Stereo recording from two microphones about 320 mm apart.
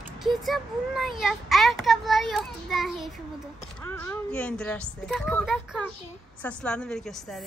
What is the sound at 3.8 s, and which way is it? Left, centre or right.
A woman's voice, centre.